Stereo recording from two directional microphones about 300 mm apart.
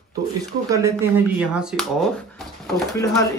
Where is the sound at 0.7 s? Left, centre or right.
Centre.